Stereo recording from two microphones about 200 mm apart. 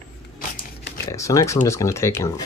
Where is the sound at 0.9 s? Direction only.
15° left (ahead or behind).